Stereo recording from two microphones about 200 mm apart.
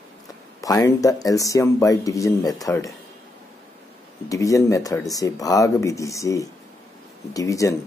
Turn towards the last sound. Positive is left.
turn(degrees=15)  # may be behind; listen again after turning